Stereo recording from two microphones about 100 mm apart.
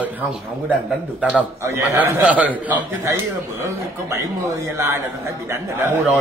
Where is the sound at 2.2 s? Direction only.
15° right (ahead or behind).